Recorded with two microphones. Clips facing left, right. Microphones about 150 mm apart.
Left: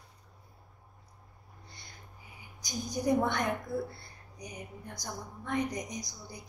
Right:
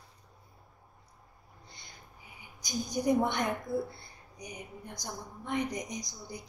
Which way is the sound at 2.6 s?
20° right (ahead or behind).